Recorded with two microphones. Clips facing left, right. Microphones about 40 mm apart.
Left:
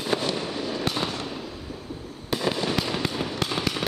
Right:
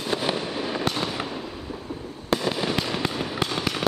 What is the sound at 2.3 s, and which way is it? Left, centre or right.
Fireworks, centre.